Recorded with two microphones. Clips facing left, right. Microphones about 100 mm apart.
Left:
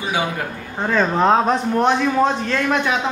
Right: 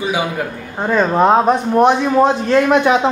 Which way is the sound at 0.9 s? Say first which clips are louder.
Right 3 dB; 10° right (ahead or behind).